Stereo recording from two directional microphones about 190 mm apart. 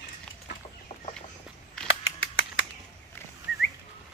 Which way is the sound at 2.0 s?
90° left.